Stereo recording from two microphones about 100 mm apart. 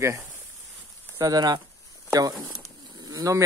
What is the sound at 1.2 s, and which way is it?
Speech, 40° right (ahead or behind).